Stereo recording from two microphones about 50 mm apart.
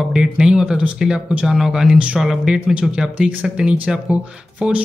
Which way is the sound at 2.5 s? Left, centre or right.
Centre.